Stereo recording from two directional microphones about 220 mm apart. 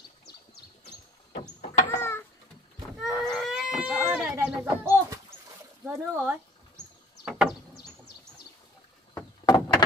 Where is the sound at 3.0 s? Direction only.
Centre (ahead or behind).